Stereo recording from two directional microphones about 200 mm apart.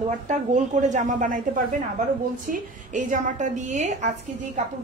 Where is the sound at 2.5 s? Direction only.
40° right (ahead or behind).